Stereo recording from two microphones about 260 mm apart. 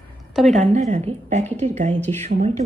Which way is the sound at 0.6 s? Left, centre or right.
Right.